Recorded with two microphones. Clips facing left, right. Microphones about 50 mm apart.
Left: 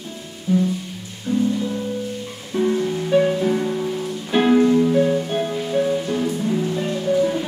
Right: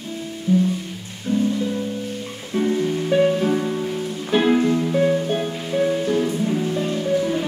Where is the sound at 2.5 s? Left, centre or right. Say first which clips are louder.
Left 1 dB; right.